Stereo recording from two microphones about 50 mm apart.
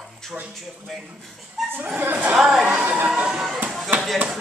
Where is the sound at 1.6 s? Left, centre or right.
Centre.